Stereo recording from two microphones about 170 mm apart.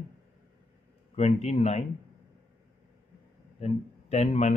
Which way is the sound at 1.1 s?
40° left (ahead or behind).